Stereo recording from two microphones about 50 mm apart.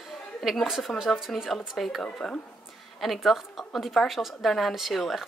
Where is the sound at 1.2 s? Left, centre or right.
Centre.